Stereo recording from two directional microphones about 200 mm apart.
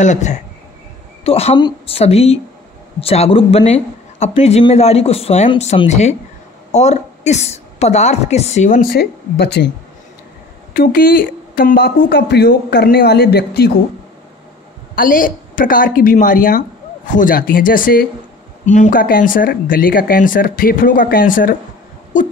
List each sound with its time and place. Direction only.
0.0 s a woman's voice: 35° left (ahead or behind); by 9.7 s 55° left (ahead or behind)
10.7 s speech: 45° left (ahead or behind)
15.0 s speech: 45° left (ahead or behind)